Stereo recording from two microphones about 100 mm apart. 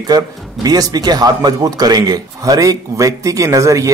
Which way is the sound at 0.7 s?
40° right (ahead or behind).